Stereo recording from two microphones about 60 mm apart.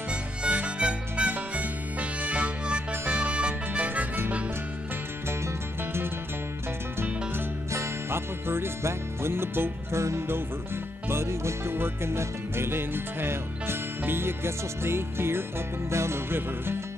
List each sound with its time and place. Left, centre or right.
0.1 s music: right
7.7 s music: right